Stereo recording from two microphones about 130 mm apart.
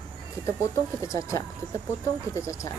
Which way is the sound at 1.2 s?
25° left (ahead or behind).